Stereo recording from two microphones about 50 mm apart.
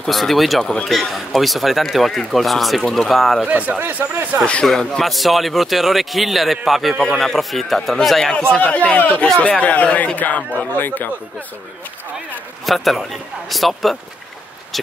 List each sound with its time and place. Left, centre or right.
0.0 s speech: centre
3.4 s speech: right
3.8 s speech: right
4.6 s speech: centre
7.0 s speech: centre
8.3 s a man's voice: centre
8.5 s speech: left
12.6 s speech: centre